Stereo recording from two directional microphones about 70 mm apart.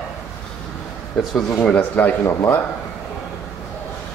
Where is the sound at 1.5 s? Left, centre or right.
Centre.